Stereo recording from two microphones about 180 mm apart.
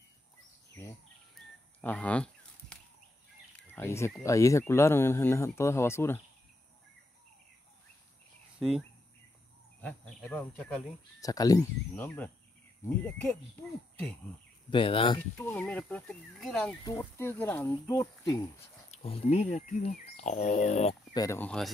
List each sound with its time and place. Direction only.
1.8 s a sound: 10° left (ahead or behind)
3.5 s bird: 10° left (ahead or behind)
4.2 s speech: 15° left (ahead or behind)
8.5 s speech: 5° right (ahead or behind)
9.8 s speech: 5° left (ahead or behind)
11.1 s speech: 20° left (ahead or behind)
11.9 s speech: 10° left (ahead or behind)
14.7 s speech: 30° left (ahead or behind)
15.3 s speech: 10° left (ahead or behind)
18.9 s speech: 35° left (ahead or behind)
21.1 s speech: 20° left (ahead or behind)
21.4 s speech: 5° left (ahead or behind)